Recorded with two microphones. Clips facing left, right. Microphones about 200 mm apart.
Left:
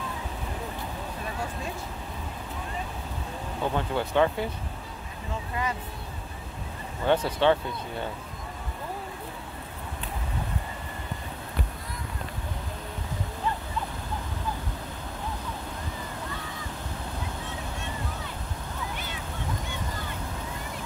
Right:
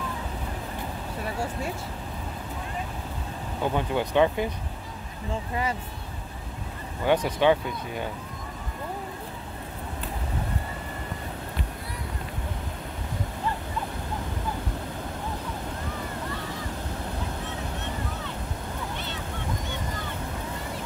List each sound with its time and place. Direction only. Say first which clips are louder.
3.6 s speech: right 2 dB; 15° right (ahead or behind)
7.1 s speech: right 1 dB; 10° right (ahead or behind)